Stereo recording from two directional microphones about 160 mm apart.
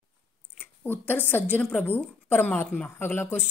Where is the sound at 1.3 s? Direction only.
10° left (ahead or behind).